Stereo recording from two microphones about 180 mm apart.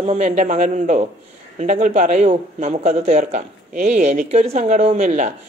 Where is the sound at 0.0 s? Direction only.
40° right (ahead or behind).